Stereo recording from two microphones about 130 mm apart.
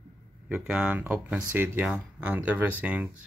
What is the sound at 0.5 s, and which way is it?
Speech, 10° right (ahead or behind).